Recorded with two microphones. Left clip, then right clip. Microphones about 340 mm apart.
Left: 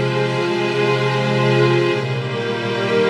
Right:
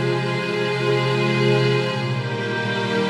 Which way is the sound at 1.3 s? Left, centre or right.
Centre.